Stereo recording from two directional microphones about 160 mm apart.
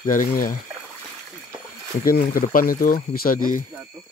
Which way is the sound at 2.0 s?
60° left (ahead or behind).